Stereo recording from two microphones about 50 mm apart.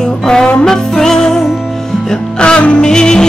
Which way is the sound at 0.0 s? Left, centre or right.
Centre.